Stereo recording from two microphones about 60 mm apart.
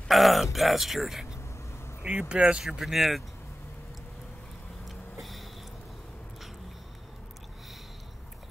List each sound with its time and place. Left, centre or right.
0.1 s groan: centre
2.0 s speech: centre
4.8 s a sound: centre